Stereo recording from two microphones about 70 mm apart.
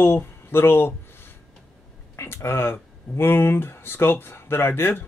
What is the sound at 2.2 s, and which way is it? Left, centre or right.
Speech, left.